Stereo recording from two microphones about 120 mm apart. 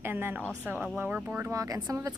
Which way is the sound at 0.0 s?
20° right (ahead or behind).